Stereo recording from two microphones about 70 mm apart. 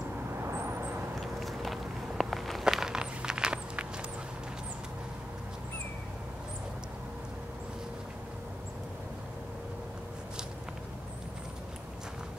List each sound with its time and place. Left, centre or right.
0.4 s vehicle: right
1.2 s walk: centre